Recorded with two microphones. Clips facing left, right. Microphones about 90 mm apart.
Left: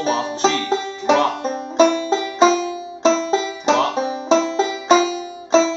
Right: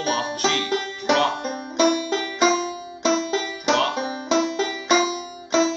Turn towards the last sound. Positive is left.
turn(degrees=30)  # may be behind; listen again after turning